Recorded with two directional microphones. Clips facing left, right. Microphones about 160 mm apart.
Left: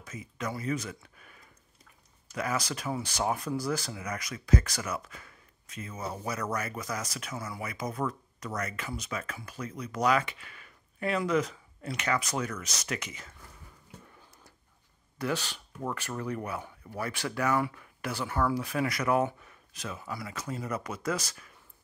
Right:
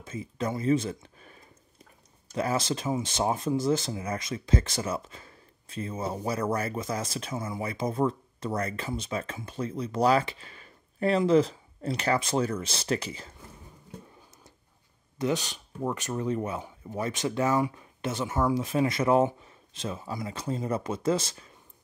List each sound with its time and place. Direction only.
0.0 s speech: 30° right (ahead or behind)
15.1 s speech: 20° right (ahead or behind)